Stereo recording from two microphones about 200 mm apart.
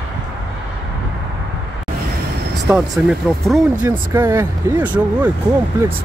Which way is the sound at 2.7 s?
5° right (ahead or behind).